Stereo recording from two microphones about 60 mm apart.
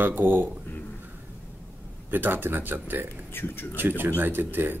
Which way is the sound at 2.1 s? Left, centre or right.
Right.